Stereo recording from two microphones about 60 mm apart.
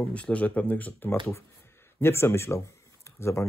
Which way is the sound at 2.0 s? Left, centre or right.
Left.